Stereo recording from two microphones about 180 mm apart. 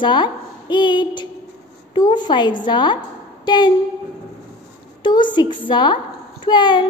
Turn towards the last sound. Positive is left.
turn(degrees=25)  # may be behind; listen again after turning